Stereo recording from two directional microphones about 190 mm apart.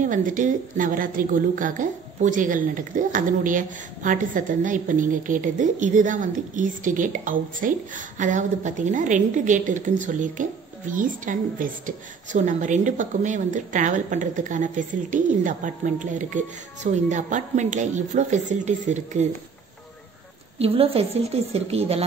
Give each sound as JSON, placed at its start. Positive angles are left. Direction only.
{"t": 0.0, "sound": "a woman's voice", "side_deg": -45}
{"t": 20.5, "sound": "a woman's voice", "side_deg": -30}